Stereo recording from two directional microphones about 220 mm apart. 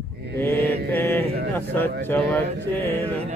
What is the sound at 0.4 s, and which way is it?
Mantra, 10° left (ahead or behind).